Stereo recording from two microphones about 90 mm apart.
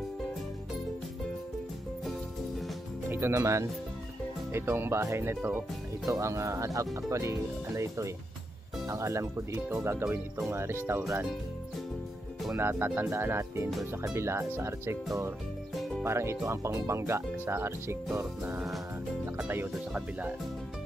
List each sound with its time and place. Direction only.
3.1 s speech: 30° right (ahead or behind)
12.5 s speech: 25° right (ahead or behind)
13.7 s speech: centre (ahead or behind)
14.1 s speech: 30° right (ahead or behind)
16.0 s speech: 30° right (ahead or behind)
19.9 s speech: 15° right (ahead or behind)